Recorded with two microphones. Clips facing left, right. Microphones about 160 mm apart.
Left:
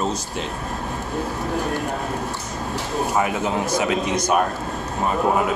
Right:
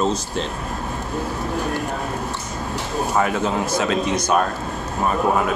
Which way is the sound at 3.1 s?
20° left (ahead or behind).